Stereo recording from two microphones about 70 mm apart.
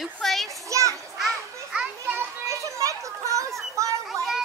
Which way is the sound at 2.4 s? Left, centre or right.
Right.